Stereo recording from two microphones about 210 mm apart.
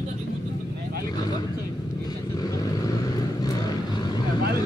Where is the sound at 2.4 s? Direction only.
15° left (ahead or behind).